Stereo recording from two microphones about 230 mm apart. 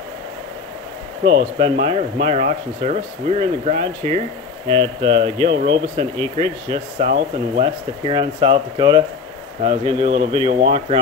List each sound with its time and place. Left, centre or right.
1.2 s speech: right